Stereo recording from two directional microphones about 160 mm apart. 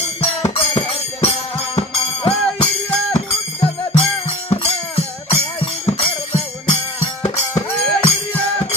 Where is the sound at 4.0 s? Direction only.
35° left (ahead or behind).